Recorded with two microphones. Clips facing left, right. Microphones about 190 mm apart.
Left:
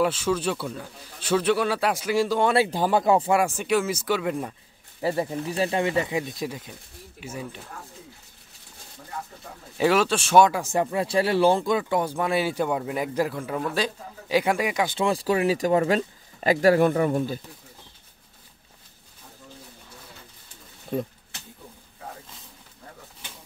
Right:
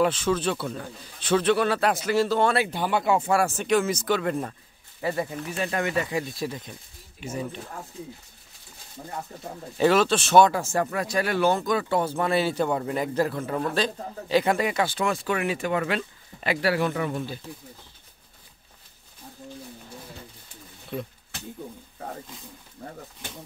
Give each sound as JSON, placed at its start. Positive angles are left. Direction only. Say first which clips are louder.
{"t": 0.0, "sound": "a man's voice", "louder": "even", "side_deg": 10}
{"t": 2.5, "sound": "speech", "louder": "left 3 dB", "side_deg": 30}
{"t": 3.3, "sound": "a man's voice", "louder": "even", "side_deg": 15}
{"t": 5.3, "sound": "a man's voice", "louder": "left 4 dB", "side_deg": 30}
{"t": 9.8, "sound": "a man's voice", "louder": "right 1 dB", "side_deg": 10}
{"t": 11.1, "sound": "speech", "louder": "left 4 dB", "side_deg": 30}
{"t": 11.9, "sound": "a man's voice", "louder": "even", "side_deg": 15}
{"t": 15.0, "sound": "speech", "louder": "left 3 dB", "side_deg": 35}
{"t": 20.9, "sound": "speech", "louder": "left 5 dB", "side_deg": 40}